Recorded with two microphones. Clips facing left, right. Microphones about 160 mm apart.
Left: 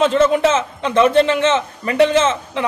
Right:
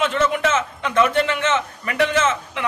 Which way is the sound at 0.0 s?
35° left (ahead or behind).